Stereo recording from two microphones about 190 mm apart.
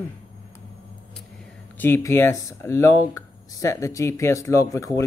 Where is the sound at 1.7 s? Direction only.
10° left (ahead or behind).